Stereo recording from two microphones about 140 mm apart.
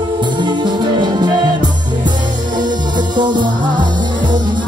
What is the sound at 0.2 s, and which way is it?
Music, 35° right (ahead or behind).